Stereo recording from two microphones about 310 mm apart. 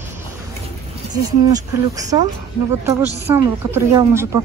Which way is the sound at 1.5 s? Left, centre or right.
Centre.